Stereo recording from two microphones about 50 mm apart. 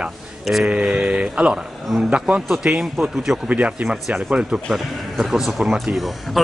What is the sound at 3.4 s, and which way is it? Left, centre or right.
Speech, right.